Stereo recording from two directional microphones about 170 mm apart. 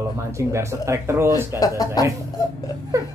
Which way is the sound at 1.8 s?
20° left (ahead or behind).